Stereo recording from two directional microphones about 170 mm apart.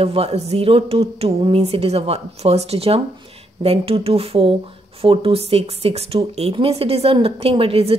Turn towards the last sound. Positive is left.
turn(degrees=-35)  # may be behind; listen again after turning